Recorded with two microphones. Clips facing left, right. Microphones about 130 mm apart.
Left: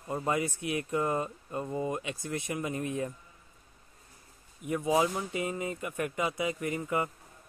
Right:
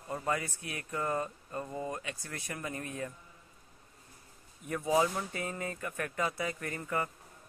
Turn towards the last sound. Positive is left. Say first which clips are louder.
# left 4 dB
turn(degrees=15)  # may be behind; listen again after turning